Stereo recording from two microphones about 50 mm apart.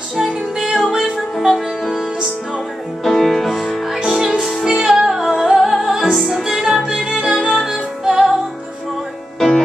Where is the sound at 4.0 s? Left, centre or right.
Centre.